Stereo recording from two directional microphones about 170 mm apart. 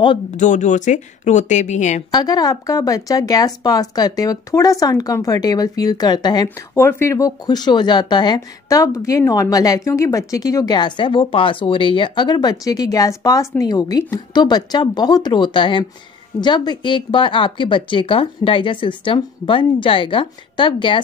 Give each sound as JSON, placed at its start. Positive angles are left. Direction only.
{"t": 0.4, "sound": "speech", "side_deg": 45}
{"t": 2.0, "sound": "speech", "side_deg": 25}